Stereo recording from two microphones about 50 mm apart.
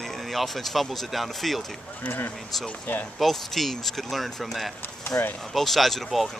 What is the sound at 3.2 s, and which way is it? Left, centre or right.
Speech, centre.